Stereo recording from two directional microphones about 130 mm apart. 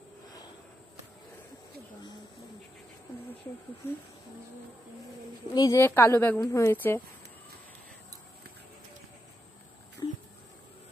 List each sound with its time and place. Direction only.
3.8 s speech: 20° left (ahead or behind)
5.5 s a woman's voice: 30° left (ahead or behind)
5.8 s a woman's voice: 15° left (ahead or behind)
10.0 s a sound: 30° left (ahead or behind)